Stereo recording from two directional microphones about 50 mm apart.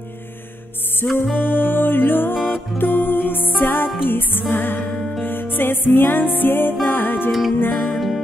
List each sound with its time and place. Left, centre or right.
1.0 s music: left
7.2 s music: centre
7.5 s music: left